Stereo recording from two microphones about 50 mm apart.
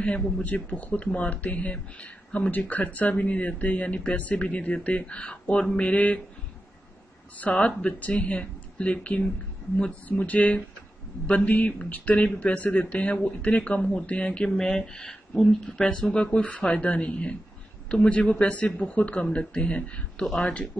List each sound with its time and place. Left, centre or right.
0.0 s speech: left
7.3 s speech: left; by 15.7 s centre
15.8 s speech: left